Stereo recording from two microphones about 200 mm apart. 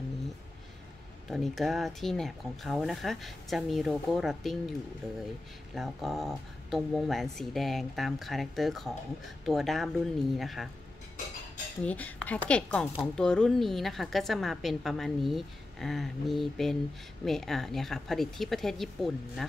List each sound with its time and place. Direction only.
1.3 s a woman's voice: centre (ahead or behind)
5.8 s a woman's voice: centre (ahead or behind)
11.8 s a woman's voice: 5° left (ahead or behind)